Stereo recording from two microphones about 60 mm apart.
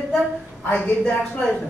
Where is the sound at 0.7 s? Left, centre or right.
Left.